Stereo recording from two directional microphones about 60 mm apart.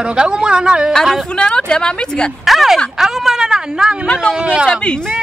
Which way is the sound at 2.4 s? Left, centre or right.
Centre.